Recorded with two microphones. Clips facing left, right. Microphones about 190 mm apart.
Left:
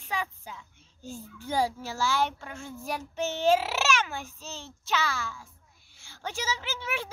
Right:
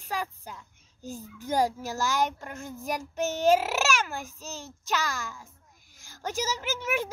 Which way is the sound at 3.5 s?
10° right (ahead or behind).